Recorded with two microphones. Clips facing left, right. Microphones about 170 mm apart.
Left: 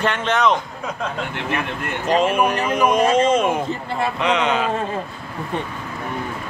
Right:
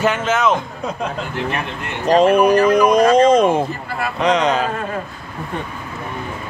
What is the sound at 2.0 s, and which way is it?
Speech, 40° right (ahead or behind).